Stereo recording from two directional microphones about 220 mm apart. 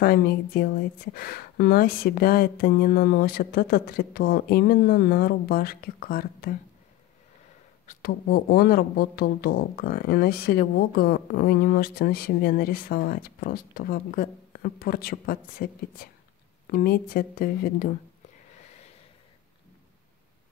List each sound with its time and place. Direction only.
0.0 s speech: 45° left (ahead or behind)
7.8 s speech: 35° left (ahead or behind)